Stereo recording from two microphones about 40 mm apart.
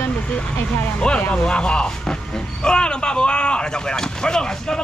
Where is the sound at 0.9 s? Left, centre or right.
Left.